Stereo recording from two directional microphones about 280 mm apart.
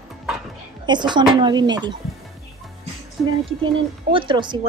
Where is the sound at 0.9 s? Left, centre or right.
Centre.